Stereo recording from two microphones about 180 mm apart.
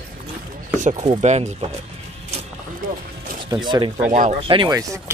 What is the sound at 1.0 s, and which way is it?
Speech, 40° right (ahead or behind).